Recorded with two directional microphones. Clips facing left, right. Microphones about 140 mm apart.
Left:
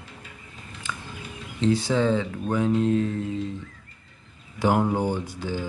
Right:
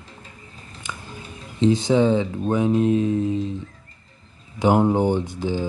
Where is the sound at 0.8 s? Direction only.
15° right (ahead or behind).